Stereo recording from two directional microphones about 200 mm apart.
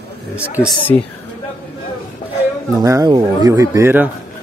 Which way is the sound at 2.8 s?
20° right (ahead or behind).